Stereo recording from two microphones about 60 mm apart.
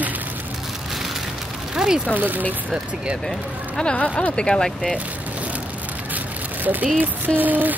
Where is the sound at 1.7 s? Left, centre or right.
Centre.